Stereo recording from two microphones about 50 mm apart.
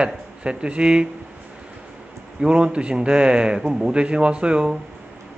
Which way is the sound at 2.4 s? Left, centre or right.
Right.